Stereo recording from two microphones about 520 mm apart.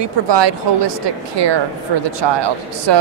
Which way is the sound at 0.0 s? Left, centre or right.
Right.